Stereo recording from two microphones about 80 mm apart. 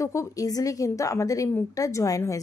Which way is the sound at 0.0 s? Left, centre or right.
Left.